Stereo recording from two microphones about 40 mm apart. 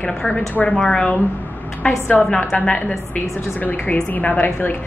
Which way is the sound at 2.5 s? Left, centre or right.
Left.